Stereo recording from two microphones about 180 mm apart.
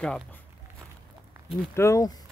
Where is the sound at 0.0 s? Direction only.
5° left (ahead or behind).